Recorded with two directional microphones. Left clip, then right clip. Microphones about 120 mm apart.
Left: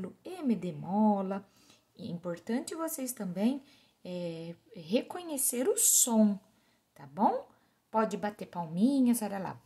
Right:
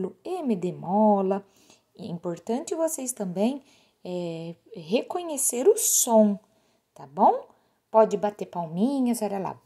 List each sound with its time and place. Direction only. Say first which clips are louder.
0.0 s a woman's voice: right 8 dB; 40° right (ahead or behind)